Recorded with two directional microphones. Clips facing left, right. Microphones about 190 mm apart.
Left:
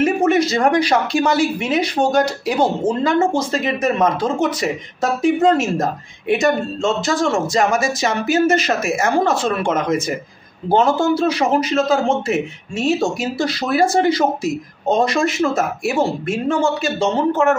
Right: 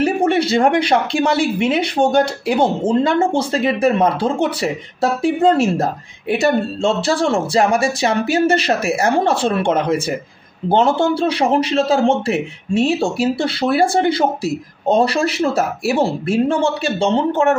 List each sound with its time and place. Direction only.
0.0 s a woman's voice: 30° right (ahead or behind)